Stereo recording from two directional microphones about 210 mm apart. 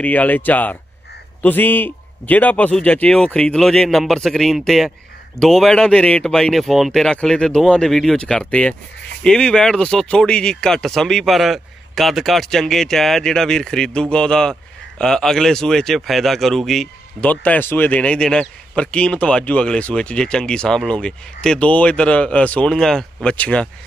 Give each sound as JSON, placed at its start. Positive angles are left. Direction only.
{"t": 0.0, "sound": "speech", "side_deg": 5}